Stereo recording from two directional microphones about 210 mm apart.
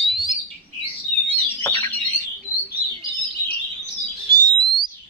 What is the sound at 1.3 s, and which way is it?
Bird, 10° left (ahead or behind).